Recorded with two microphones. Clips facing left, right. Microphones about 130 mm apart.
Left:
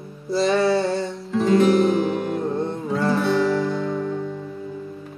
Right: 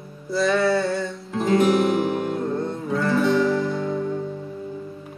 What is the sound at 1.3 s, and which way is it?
Music, centre (ahead or behind).